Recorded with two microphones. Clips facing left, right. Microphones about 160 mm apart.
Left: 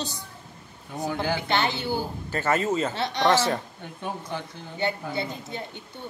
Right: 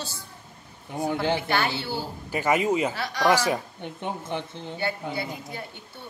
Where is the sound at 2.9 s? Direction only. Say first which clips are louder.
Left 1 dB; 25° left (ahead or behind).